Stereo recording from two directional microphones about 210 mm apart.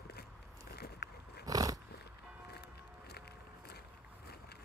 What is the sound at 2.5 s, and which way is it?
Music, 50° left (ahead or behind).